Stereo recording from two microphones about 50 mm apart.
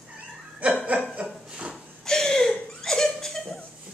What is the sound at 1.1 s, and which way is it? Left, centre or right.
Chuckle, right.